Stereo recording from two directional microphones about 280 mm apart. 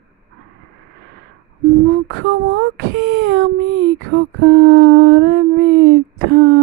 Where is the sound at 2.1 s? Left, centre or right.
Right.